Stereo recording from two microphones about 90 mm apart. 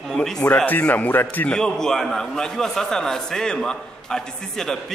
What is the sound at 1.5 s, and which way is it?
A man's voice, 5° left (ahead or behind).